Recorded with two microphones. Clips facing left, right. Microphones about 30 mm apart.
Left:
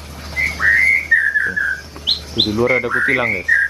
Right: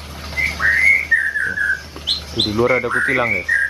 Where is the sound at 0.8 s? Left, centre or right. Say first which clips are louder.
Left 1 dB; centre.